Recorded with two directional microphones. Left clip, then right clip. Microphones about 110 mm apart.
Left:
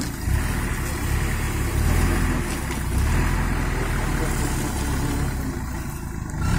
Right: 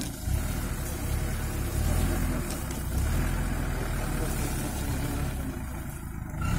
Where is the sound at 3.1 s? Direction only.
25° right (ahead or behind).